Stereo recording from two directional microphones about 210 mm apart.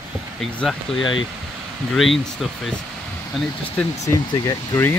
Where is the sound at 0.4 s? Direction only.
Centre (ahead or behind).